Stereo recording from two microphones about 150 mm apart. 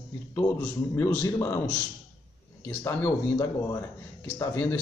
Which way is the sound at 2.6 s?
15° left (ahead or behind).